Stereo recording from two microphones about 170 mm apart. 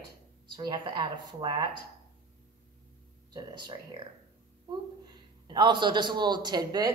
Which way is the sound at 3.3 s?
25° right (ahead or behind).